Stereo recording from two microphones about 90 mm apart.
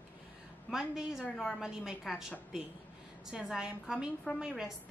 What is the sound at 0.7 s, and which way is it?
A woman's voice, 5° right (ahead or behind).